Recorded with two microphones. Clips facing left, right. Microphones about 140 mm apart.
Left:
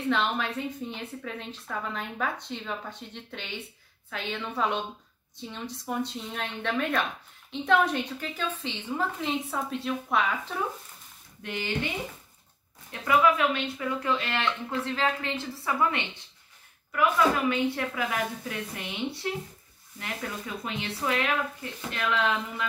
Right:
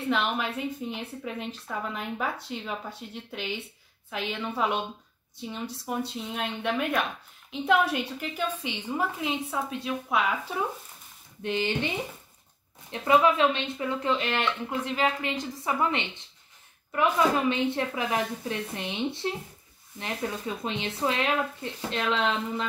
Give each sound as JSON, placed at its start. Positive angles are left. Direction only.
{"t": 0.1, "sound": "a woman's voice", "side_deg": -10}
{"t": 9.3, "sound": "a woman's voice", "side_deg": 0}
{"t": 11.4, "sound": "speech", "side_deg": -20}
{"t": 12.9, "sound": "speech", "side_deg": -25}